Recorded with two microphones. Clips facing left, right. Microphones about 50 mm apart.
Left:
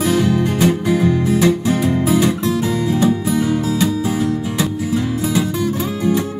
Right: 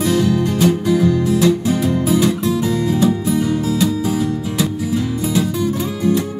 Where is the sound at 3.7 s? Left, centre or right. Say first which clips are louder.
Even; left.